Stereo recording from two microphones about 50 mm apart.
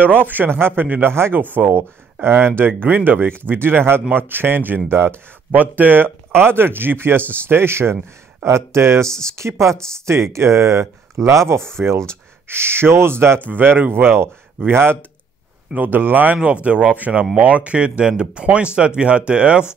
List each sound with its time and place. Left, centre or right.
0.0 s a man's voice: right
1.1 s speech: right
1.4 s speech: right
5.5 s speech: right
8.5 s speech: right
11.8 s speech: right
12.4 s speech: right
13.5 s speech: right
15.7 s a man's voice: right